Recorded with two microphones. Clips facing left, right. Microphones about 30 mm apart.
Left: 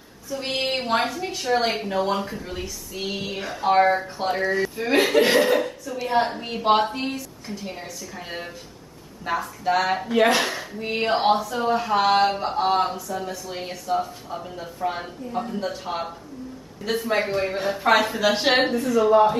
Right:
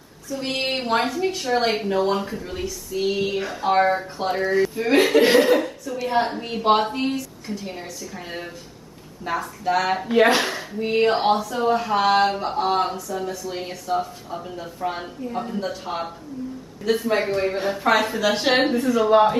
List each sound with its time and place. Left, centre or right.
0.3 s a woman's voice: centre
9.2 s a woman's voice: centre
10.0 s a woman's voice: centre
18.7 s speech: centre
19.0 s speech: right